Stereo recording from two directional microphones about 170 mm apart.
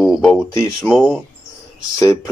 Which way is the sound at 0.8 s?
Centre (ahead or behind).